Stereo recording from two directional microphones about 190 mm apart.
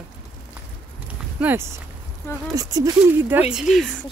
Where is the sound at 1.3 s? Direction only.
10° right (ahead or behind).